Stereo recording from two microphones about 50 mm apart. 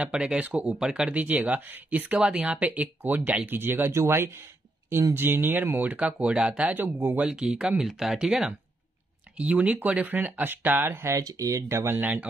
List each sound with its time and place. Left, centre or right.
0.0 s speech: centre
1.1 s speech: right
2.2 s speech: centre
2.6 s speech: right
3.4 s speech: right
3.9 s speech: right
5.1 s speech: right
6.2 s speech: centre
6.7 s speech: right
7.2 s speech: centre
7.8 s speech: centre
9.4 s speech: right
11.1 s speech: right
11.8 s speech: right